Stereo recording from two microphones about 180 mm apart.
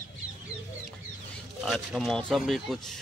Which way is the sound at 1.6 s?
Centre (ahead or behind).